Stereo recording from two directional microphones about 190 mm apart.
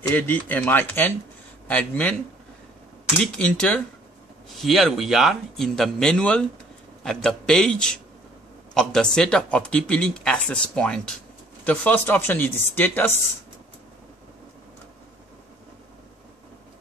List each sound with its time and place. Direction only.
0.0 s speech: 10° left (ahead or behind)